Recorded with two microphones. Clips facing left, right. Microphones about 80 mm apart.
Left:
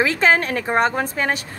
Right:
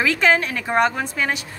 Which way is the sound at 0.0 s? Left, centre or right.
Left.